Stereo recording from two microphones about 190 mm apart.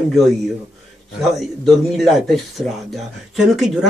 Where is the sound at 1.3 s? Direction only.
Centre (ahead or behind).